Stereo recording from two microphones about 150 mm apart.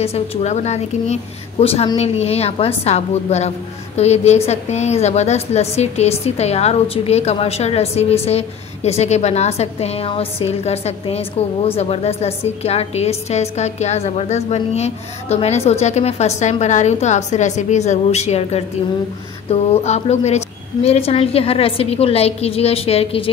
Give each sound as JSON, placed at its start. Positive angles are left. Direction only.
{"t": 0.0, "sound": "a woman's voice", "side_deg": 45}